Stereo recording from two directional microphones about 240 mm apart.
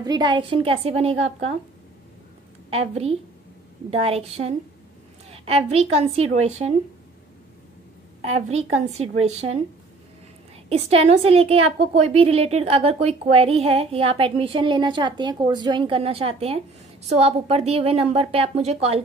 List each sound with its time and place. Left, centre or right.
0.0 s a woman's voice: centre
2.7 s a woman's voice: right
8.4 s a woman's voice: right
10.7 s a woman's voice: right